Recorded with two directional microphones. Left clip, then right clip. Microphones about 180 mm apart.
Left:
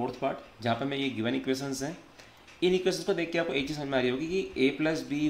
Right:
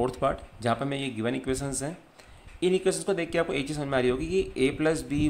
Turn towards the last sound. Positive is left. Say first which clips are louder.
# right 3 dB
turn(degrees=-25)  # may be behind; listen again after turning